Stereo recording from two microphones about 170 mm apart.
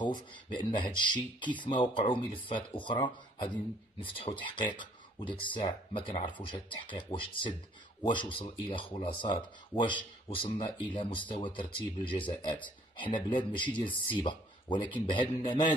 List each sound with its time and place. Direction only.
0.0 s speech: 25° left (ahead or behind)